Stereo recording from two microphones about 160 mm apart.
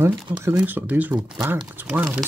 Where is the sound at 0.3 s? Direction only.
15° right (ahead or behind).